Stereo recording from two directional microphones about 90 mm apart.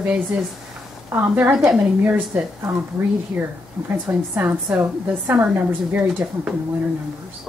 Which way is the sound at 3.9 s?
25° right (ahead or behind).